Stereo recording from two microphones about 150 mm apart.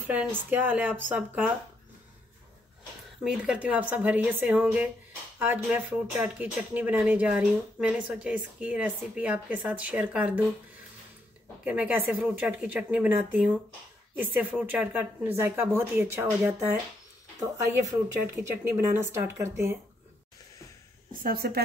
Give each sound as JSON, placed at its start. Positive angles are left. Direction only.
{"t": 0.0, "sound": "speech", "side_deg": -10}
{"t": 3.3, "sound": "speech", "side_deg": -5}
{"t": 11.6, "sound": "speech", "side_deg": -10}
{"t": 17.7, "sound": "speech", "side_deg": -15}
{"t": 21.1, "sound": "a woman's voice", "side_deg": -75}